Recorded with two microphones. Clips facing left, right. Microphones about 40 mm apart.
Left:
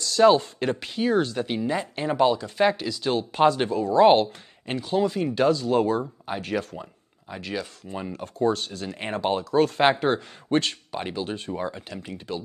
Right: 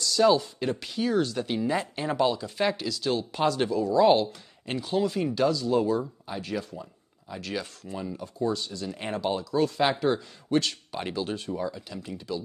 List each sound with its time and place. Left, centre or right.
0.0 s speech: left
3.0 s speech: left
4.6 s speech: centre
5.3 s speech: left
7.2 s speech: left
8.2 s speech: left
10.9 s speech: centre
11.3 s speech: left